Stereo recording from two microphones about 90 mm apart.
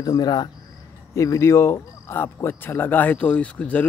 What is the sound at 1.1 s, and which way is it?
Speech, 35° left (ahead or behind).